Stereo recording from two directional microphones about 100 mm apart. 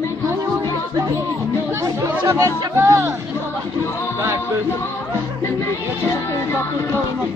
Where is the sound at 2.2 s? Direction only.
30° right (ahead or behind).